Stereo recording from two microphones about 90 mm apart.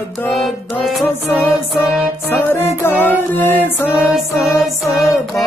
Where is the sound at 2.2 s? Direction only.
25° left (ahead or behind).